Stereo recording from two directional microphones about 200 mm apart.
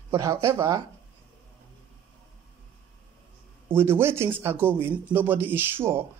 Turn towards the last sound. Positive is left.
turn(degrees=-10)  # may be behind; listen again after turning